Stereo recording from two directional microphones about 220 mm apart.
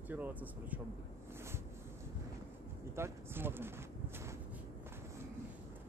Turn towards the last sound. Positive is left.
turn(degrees=-10)  # may be behind; listen again after turning